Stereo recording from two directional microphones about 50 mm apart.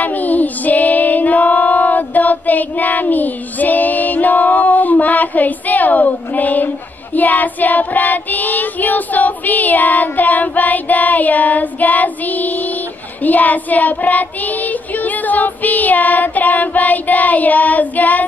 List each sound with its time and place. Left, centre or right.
0.0 s child singing: left